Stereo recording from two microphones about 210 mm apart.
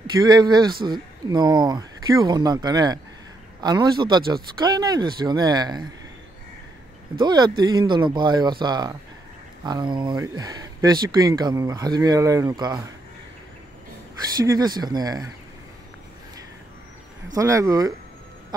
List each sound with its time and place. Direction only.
0.2 s speech: 20° right (ahead or behind)
7.2 s speech: 20° right (ahead or behind)
14.4 s speech: 15° right (ahead or behind)
17.3 s speech: 15° right (ahead or behind)